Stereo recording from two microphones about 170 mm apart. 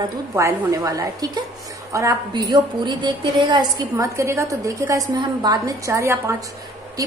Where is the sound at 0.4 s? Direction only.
20° right (ahead or behind).